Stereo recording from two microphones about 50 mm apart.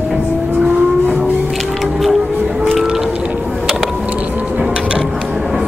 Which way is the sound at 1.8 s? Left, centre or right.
Centre.